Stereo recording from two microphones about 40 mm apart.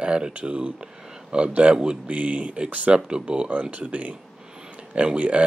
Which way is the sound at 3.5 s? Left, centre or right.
Right.